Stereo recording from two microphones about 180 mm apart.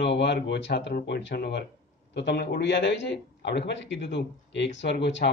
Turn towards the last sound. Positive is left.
turn(degrees=75)  # may be behind; listen again after turning